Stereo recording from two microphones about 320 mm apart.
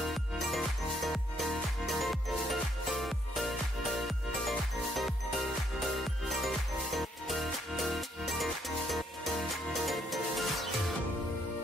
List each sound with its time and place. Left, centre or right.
0.0 s music: centre